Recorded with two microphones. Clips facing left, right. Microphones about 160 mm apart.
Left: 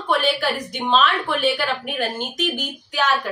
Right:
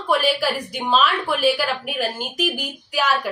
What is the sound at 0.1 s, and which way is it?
A woman's voice, 5° right (ahead or behind).